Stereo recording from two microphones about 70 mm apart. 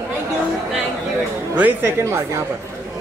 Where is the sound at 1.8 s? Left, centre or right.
Right.